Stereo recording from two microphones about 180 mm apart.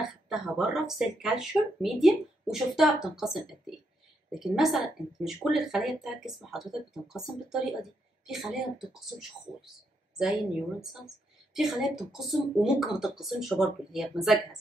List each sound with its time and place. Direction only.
0.0 s speech: centre (ahead or behind)
11.5 s speech: centre (ahead or behind)